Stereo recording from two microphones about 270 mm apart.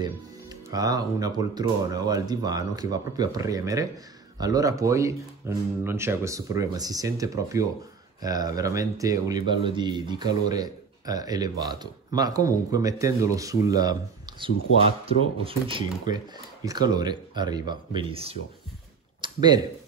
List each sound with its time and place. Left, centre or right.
0.0 s speech: centre
15.0 s speech: centre